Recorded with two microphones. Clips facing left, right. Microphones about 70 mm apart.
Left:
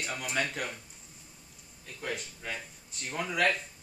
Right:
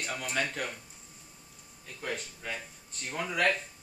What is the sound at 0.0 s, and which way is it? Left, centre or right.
Speech, centre.